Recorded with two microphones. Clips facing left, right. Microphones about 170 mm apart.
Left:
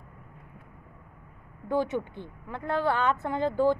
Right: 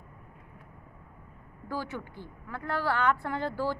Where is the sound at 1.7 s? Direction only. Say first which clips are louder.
Left 8 dB; 20° left (ahead or behind).